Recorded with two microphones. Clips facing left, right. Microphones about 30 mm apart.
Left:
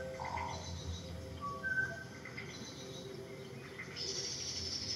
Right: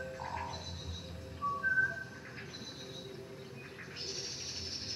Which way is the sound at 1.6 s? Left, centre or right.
Right.